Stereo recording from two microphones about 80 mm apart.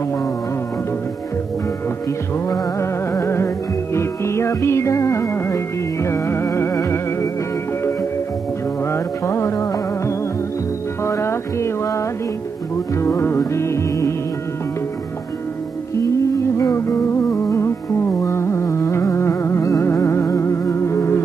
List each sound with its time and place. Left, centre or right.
2.8 s music: left
8.8 s music: left
16.7 s music: left